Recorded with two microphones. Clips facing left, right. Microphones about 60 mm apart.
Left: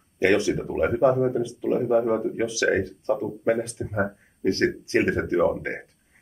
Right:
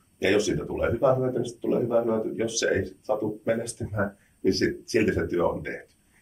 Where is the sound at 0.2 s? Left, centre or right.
Left.